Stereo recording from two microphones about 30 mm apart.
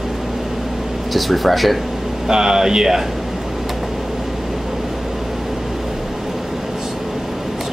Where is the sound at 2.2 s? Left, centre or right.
Right.